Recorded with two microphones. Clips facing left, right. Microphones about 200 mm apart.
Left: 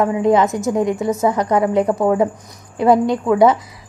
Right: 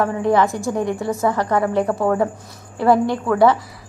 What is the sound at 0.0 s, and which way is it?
A woman's voice, 20° left (ahead or behind).